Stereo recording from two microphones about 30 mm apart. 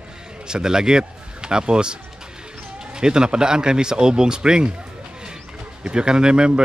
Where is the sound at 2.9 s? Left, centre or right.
Right.